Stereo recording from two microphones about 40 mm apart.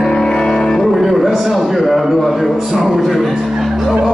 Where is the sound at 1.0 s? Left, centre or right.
Centre.